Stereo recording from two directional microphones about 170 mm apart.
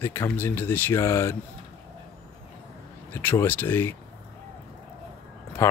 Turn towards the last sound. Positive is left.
turn(degrees=15)  # may be behind; listen again after turning